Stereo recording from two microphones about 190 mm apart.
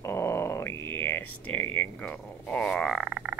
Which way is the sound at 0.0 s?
15° left (ahead or behind).